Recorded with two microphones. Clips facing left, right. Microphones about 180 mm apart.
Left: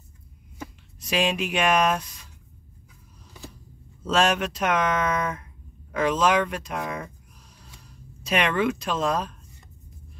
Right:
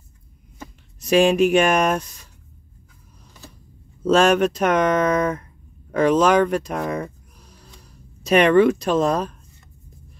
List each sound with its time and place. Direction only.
1.0 s speech: 45° right (ahead or behind)
4.0 s speech: 40° right (ahead or behind)